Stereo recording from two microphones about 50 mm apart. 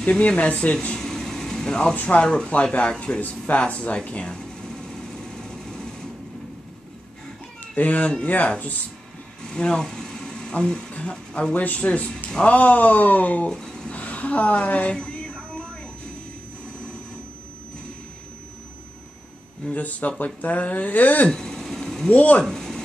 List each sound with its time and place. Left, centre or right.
0.0 s speech: left
0.9 s vehicle: centre
2.0 s speech: left
2.2 s speech: centre
3.2 s speech: left
4.3 s vehicle: centre
7.7 s speech: left
9.4 s speech: centre; by 13.5 s left
13.5 s a sound: centre
13.9 s music: left
19.7 s speech: left
21.3 s vehicle: centre
22.1 s speech: left
22.4 s a sound: centre